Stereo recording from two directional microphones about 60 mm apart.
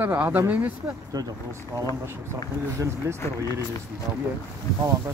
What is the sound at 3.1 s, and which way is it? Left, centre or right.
Speech, right.